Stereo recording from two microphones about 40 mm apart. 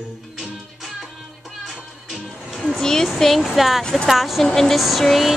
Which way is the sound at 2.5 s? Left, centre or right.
Centre.